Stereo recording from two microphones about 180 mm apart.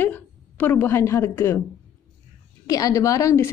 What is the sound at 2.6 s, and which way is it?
Speech, 20° left (ahead or behind).